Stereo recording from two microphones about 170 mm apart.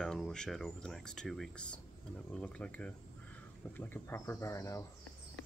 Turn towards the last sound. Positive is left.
turn(degrees=15)  # may be behind; listen again after turning